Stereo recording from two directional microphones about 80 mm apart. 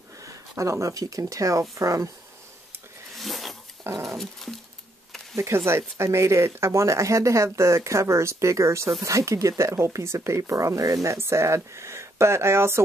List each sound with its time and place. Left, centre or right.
0.2 s speech: right
3.2 s zipper: centre
4.0 s dog: centre
5.3 s speech: right
11.1 s speech: right